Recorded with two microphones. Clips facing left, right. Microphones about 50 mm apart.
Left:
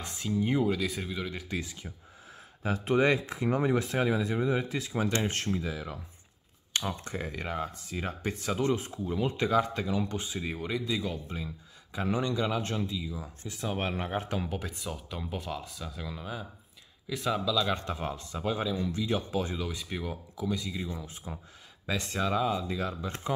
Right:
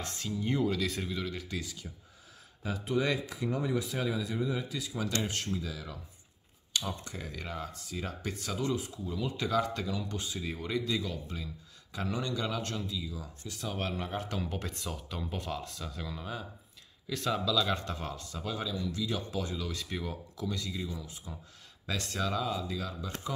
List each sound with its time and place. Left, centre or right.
0.0 s speech: centre
2.6 s speech: left
3.4 s speech: left
8.5 s speech: left
9.5 s speech: left
14.3 s speech: centre
20.9 s speech: left
21.8 s speech: centre
22.8 s speech: left